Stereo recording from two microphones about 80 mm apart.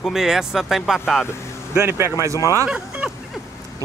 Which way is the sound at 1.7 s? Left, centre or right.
Right.